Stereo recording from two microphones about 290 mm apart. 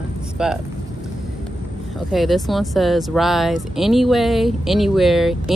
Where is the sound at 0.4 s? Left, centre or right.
Centre.